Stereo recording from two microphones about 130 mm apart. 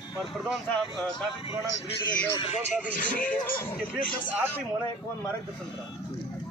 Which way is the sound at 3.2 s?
15° left (ahead or behind).